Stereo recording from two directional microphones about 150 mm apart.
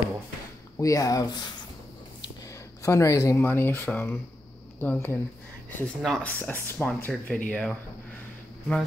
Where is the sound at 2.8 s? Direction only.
20° left (ahead or behind).